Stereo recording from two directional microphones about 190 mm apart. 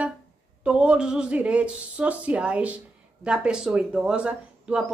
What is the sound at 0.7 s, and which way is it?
Speech, 5° right (ahead or behind).